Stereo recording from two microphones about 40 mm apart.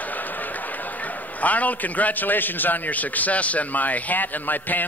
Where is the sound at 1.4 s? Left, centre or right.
Left.